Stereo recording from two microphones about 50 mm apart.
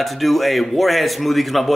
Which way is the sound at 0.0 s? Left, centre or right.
Centre.